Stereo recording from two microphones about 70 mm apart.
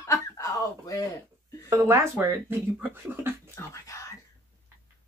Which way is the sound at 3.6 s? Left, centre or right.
Left.